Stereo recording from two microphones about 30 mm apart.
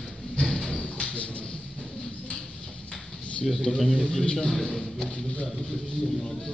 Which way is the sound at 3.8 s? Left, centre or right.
Right.